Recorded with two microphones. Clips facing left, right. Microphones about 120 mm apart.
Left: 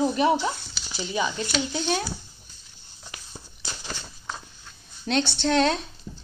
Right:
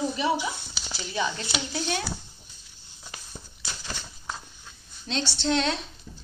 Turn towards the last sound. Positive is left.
turn(degrees=45)  # may be behind; listen again after turning